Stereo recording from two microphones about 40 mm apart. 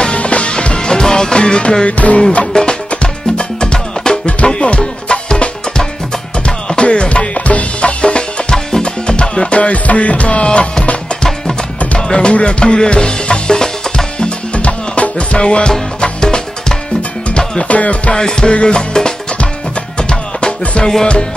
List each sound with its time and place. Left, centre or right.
0.0 s music: left
1.9 s music: left
2.5 s music: centre
12.1 s music: left
14.5 s music: left
17.6 s music: left
18.1 s music: centre